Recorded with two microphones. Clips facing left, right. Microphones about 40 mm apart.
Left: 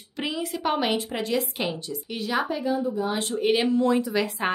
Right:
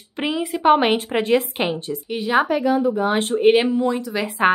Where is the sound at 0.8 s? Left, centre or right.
Right.